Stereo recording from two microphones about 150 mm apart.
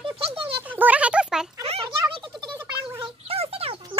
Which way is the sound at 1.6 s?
40° right (ahead or behind).